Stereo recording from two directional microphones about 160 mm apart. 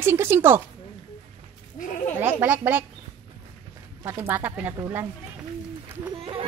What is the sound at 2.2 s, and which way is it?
Speech, 10° right (ahead or behind).